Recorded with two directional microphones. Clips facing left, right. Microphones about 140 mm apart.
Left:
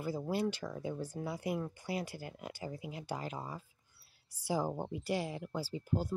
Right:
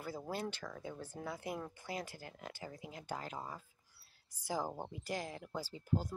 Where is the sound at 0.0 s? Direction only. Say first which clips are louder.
Left 6 dB; 5° left (ahead or behind).